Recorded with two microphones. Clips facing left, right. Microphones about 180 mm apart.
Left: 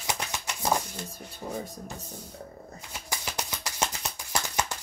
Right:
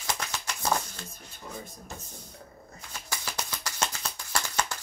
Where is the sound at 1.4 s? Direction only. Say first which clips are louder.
Left 7 dB; 45° left (ahead or behind).